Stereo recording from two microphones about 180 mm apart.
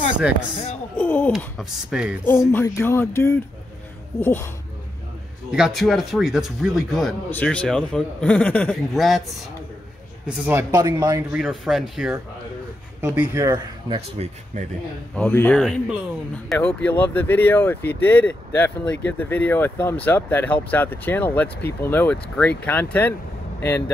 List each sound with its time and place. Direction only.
0.9 s a sound: 10° left (ahead or behind)
1.6 s a man's voice: 5° right (ahead or behind)
2.2 s speech: 15° left (ahead or behind)
5.5 s a man's voice: centre (ahead or behind)
10.2 s a man's voice: 5° right (ahead or behind)
10.7 s speech: 20° right (ahead or behind)
11.3 s a man's voice: centre (ahead or behind)
13.0 s speech: 15° right (ahead or behind)
13.9 s speech: 35° right (ahead or behind)
15.1 s speech: 10° left (ahead or behind)